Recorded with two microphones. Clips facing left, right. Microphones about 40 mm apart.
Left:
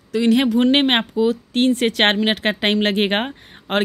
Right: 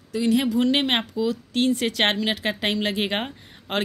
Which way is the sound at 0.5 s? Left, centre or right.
Left.